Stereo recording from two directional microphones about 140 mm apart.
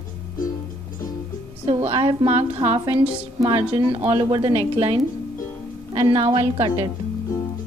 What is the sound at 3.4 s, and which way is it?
A woman's voice, 30° right (ahead or behind).